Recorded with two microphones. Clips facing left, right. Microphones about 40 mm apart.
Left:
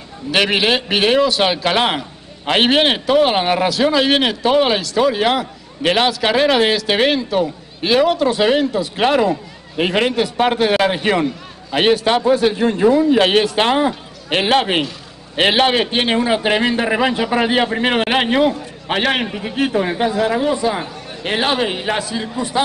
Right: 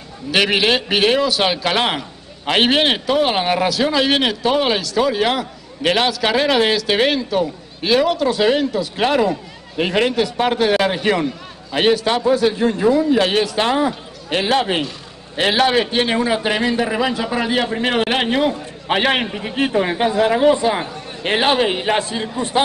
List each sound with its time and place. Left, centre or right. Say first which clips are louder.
0.3 s a man's voice: even; centre; by 11.2 s left
11.7 s a man's voice: left 2 dB; left; by 21.9 s centre